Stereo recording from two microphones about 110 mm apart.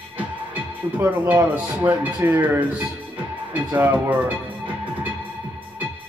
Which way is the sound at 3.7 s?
15° right (ahead or behind).